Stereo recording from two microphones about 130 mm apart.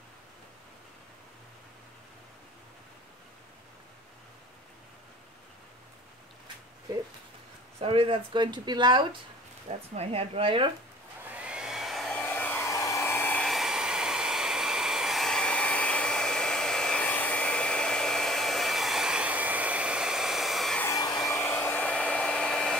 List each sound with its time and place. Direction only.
7.8 s speech: 45° right (ahead or behind)
9.9 s a woman's voice: 50° right (ahead or behind)
11.2 s hair dryer: 10° right (ahead or behind)
12.2 s hair dryer: 15° left (ahead or behind)
12.7 s hair dryer: 25° left (ahead or behind)
13.5 s hair dryer: centre (ahead or behind)
20.8 s hair dryer: 30° left (ahead or behind)
21.5 s hair dryer: 10° left (ahead or behind)